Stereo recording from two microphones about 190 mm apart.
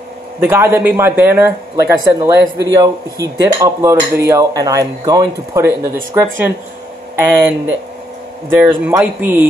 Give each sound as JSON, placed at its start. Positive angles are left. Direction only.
{"t": 0.4, "sound": "speech", "side_deg": -10}